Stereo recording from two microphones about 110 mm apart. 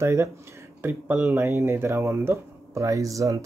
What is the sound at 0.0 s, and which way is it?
Speech, 25° right (ahead or behind).